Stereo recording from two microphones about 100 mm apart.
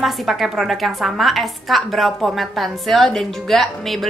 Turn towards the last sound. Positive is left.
turn(degrees=0)  # may be behind; listen again after turning